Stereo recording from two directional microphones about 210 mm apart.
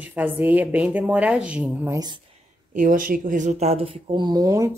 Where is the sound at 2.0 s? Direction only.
20° right (ahead or behind).